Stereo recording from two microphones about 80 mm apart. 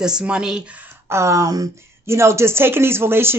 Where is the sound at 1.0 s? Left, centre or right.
Right.